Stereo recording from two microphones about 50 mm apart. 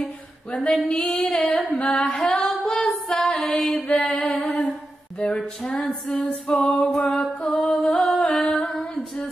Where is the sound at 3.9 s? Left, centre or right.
Left.